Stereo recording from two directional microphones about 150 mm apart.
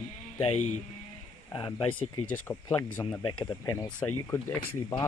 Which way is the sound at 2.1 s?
10° left (ahead or behind).